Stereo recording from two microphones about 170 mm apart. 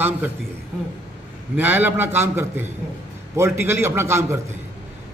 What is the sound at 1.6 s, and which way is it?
A man's voice, 10° right (ahead or behind).